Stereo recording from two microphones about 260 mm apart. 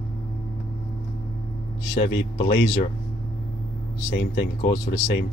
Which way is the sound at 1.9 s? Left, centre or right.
Left.